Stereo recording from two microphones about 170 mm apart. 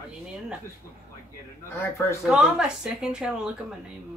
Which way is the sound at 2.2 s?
5° right (ahead or behind).